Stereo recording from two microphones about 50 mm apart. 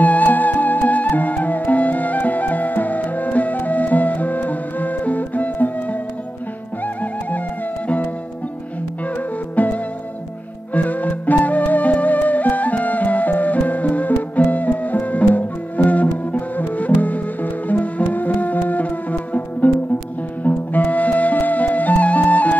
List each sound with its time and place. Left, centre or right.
0.0 s music: left
7.0 s music: left
9.6 s music: left